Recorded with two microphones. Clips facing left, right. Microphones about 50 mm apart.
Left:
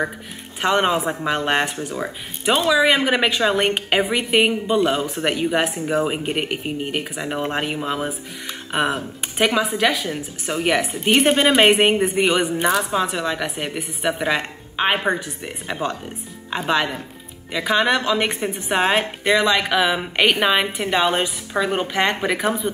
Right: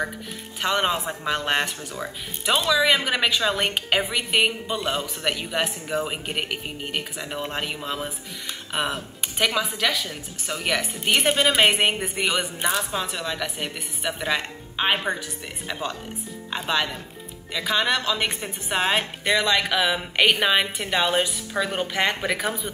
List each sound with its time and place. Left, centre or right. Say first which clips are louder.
0.6 s a woman's voice: left 5 dB; centre
5.0 s speech: left 5 dB; left
5.3 s a woman's voice: left 6 dB; centre